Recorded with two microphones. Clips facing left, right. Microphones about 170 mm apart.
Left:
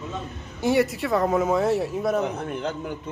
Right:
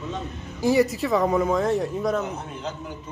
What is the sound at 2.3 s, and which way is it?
Speech, 60° left (ahead or behind).